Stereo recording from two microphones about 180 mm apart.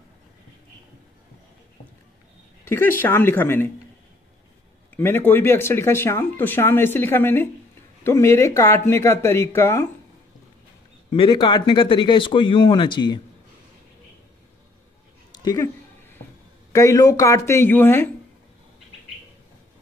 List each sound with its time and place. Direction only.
2.6 s speech: 10° left (ahead or behind)
4.9 s speech: 10° left (ahead or behind)
11.1 s speech: 25° left (ahead or behind)
15.3 s a woman's voice: 20° left (ahead or behind)
16.7 s speech: 20° left (ahead or behind)